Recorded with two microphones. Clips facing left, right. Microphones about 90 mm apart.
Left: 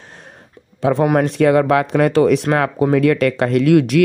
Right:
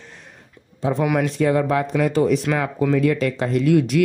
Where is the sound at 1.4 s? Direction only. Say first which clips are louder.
Left 6 dB; 70° left (ahead or behind).